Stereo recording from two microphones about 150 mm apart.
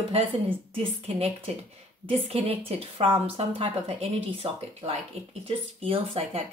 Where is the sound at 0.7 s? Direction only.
40° right (ahead or behind).